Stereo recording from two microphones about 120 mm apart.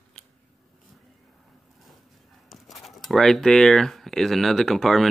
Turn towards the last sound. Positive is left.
turn(degrees=0)  # may be behind; listen again after turning